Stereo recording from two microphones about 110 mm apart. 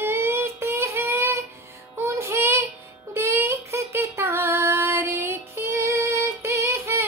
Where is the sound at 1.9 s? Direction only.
25° right (ahead or behind).